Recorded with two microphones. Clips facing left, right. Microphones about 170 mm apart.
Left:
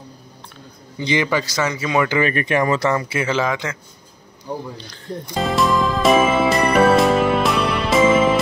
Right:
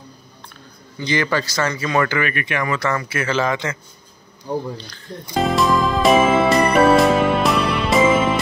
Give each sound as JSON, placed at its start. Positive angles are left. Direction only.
{"t": 0.9, "sound": "speech", "side_deg": 20}
{"t": 2.1, "sound": "speech", "side_deg": 35}
{"t": 2.9, "sound": "speech", "side_deg": 20}
{"t": 5.2, "sound": "music", "side_deg": 0}